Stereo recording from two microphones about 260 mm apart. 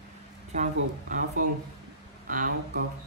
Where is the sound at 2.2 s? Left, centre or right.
Right.